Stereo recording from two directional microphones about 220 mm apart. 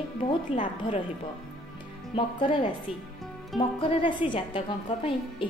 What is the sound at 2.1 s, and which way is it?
A woman's voice, 25° left (ahead or behind).